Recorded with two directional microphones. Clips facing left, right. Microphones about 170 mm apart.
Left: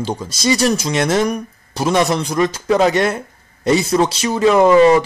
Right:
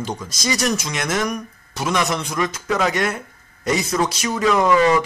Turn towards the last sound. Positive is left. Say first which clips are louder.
# left 6 dB
turn(degrees=30)  # may be behind; listen again after turning